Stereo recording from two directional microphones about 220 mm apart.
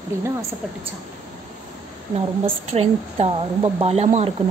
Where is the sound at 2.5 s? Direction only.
30° right (ahead or behind).